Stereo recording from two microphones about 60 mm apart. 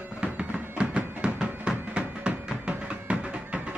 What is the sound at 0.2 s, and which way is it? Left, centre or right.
Music, centre.